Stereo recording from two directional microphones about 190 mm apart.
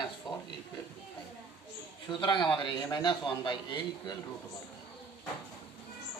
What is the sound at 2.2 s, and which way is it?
A man's voice, 25° left (ahead or behind).